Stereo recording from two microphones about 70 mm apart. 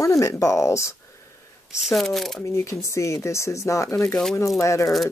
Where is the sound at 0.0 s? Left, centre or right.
Left.